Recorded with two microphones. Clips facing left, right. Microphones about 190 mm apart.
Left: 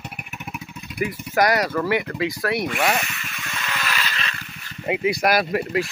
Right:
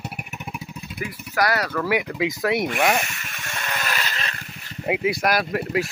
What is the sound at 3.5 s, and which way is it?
Vehicle, 45° right (ahead or behind).